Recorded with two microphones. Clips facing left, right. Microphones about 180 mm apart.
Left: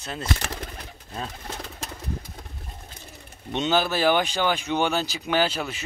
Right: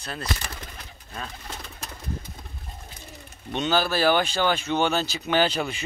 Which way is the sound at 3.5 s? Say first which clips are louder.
Left 1 dB; 20° left (ahead or behind).